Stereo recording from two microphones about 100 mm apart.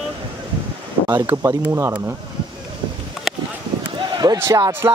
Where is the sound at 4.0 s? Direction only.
45° right (ahead or behind).